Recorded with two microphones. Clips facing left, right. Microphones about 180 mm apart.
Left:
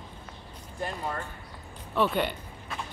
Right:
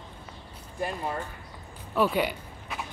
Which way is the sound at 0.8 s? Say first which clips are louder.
Right 2 dB; 5° right (ahead or behind).